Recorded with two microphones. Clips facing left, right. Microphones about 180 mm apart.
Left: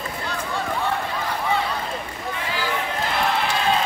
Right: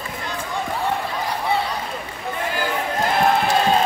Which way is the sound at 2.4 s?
50° right (ahead or behind).